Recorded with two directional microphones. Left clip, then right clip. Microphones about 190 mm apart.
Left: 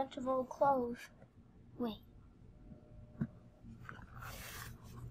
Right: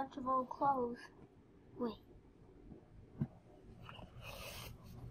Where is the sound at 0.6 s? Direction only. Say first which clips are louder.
Left 3 dB; 50° left (ahead or behind).